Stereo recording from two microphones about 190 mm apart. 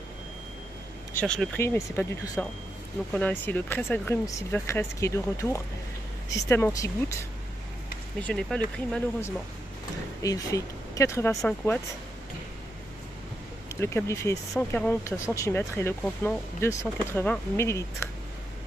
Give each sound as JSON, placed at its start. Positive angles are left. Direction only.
{"t": 1.1, "sound": "speech", "side_deg": 5}
{"t": 8.2, "sound": "speech", "side_deg": 5}
{"t": 10.2, "sound": "speech", "side_deg": 15}
{"t": 13.7, "sound": "speech", "side_deg": 15}